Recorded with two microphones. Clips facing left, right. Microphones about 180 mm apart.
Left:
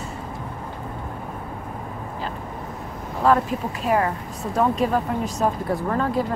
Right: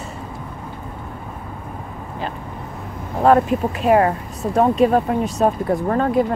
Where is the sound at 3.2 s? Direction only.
55° right (ahead or behind).